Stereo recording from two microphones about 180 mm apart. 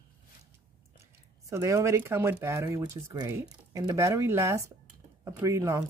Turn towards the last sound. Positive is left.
turn(degrees=-15)  # may be behind; listen again after turning